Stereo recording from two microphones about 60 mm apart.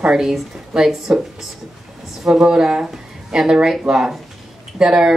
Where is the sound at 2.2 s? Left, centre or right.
Centre.